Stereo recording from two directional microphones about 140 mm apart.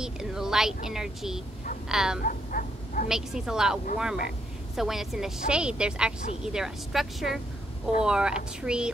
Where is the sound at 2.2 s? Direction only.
75° left (ahead or behind).